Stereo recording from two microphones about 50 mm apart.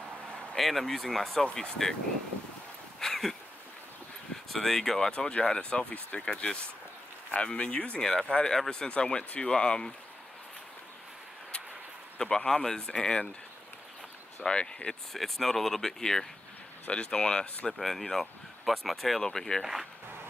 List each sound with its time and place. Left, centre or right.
0.6 s speech: centre
1.4 s speech: centre
3.0 s a sound: centre
4.5 s speech: centre; by 8.0 s left
8.0 s speech: centre
12.2 s speech: centre
14.4 s speech: left
14.9 s speech: centre
17.7 s speech: centre
19.6 s speech: centre